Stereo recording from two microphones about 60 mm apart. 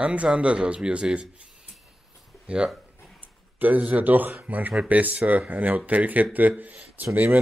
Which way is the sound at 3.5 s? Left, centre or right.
Right.